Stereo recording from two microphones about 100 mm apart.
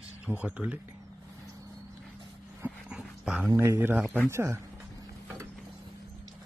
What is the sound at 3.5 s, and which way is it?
Speech, 20° right (ahead or behind).